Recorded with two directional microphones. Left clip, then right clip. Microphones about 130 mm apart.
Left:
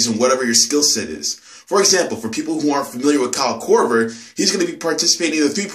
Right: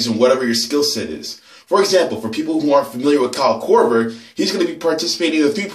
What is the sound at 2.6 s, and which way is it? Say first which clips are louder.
Speech: right 4 dB; 15° left (ahead or behind).